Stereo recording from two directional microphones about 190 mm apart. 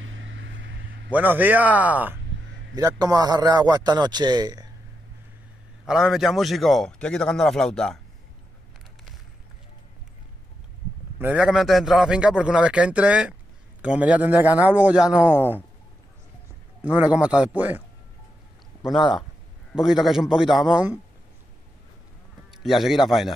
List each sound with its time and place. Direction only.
0.0 s vehicle: 90° right; by 0.8 s 75° right (ahead or behind)
1.1 s speech: 10° right (ahead or behind)
2.7 s a man's voice: 20° right (ahead or behind)
5.9 s a man's voice: centre (ahead or behind)
11.1 s a man's voice: 5° right (ahead or behind)
16.8 s speech: 5° right (ahead or behind)
18.9 s a man's voice: centre (ahead or behind)
22.5 s a man's voice: centre (ahead or behind)